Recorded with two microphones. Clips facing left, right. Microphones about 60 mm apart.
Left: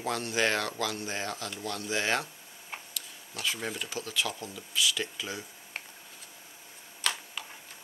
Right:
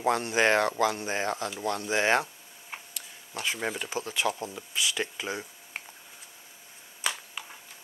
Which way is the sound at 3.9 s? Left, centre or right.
Right.